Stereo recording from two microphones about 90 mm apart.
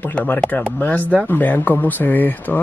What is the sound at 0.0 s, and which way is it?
Speech, 20° left (ahead or behind).